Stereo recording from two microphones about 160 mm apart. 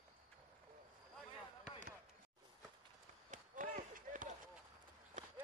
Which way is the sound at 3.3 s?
60° right (ahead or behind).